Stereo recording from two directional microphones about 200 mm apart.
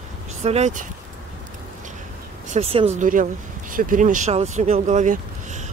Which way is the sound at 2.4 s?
30° right (ahead or behind).